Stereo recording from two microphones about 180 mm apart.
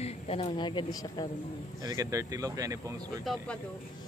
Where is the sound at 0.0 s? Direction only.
35° left (ahead or behind).